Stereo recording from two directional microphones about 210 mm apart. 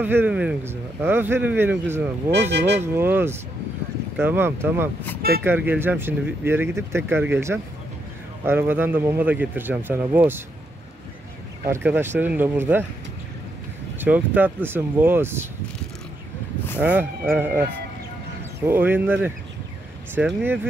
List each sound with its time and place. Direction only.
0.0 s speech: 10° right (ahead or behind)
2.5 s speech: 55° right (ahead or behind)
2.8 s speech: 10° right (ahead or behind)
11.6 s speech: 10° right (ahead or behind)
13.9 s speech: 10° right (ahead or behind)
16.8 s speech: 10° right (ahead or behind)
18.7 s speech: 10° right (ahead or behind)